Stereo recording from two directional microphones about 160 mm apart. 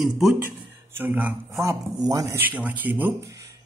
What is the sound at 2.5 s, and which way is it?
Speech, 10° right (ahead or behind).